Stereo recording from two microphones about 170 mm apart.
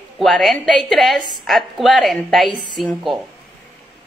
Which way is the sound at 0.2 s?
Centre (ahead or behind).